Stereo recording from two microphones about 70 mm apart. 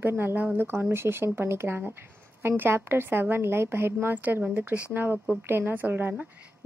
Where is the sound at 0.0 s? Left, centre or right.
Right.